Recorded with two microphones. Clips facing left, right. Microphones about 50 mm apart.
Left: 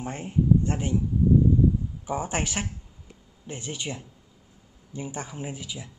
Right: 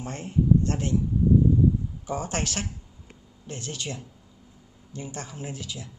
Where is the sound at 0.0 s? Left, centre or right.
Centre.